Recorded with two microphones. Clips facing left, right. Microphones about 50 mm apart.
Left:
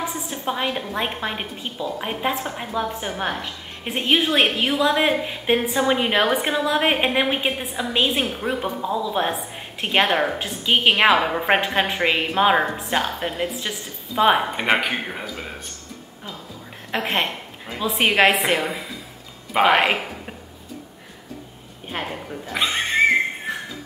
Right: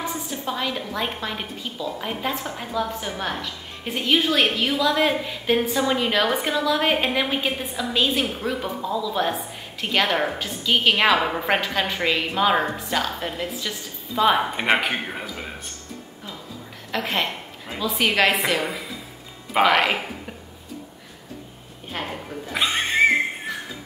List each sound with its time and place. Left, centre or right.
0.3 s a woman's voice: left; by 11.4 s centre
11.4 s a woman's voice: left
14.5 s speech: centre
17.0 s a woman's voice: left
18.6 s a woman's voice: centre
22.0 s speech: centre